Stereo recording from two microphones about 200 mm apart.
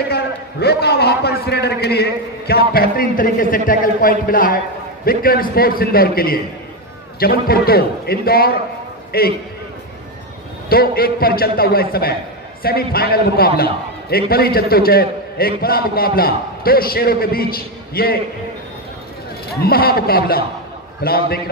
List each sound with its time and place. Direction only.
0.1 s a man's voice: 55° left (ahead or behind)
10.7 s a man's voice: 50° left (ahead or behind)
19.6 s a man's voice: 50° left (ahead or behind)